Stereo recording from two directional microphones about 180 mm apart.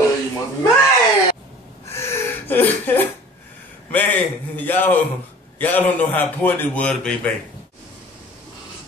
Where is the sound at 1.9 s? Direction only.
15° left (ahead or behind).